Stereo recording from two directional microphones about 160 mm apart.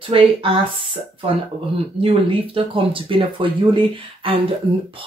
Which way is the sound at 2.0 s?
35° right (ahead or behind).